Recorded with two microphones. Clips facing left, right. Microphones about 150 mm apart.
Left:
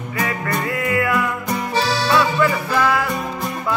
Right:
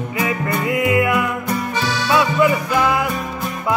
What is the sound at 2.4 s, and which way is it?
Music, 15° right (ahead or behind).